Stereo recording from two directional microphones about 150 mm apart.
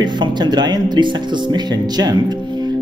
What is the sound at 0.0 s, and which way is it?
Speech, 30° right (ahead or behind).